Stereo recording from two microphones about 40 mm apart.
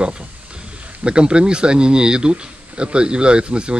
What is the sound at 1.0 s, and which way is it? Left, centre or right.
Speech, right.